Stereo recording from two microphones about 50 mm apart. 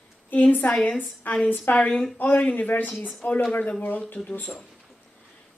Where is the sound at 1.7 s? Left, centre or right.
Left.